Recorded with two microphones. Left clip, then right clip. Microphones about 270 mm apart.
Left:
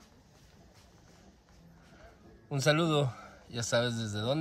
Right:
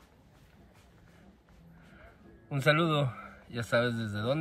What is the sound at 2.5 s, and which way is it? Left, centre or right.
A man's voice, centre.